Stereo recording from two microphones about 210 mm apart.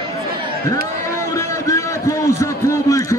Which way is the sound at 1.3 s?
15° left (ahead or behind).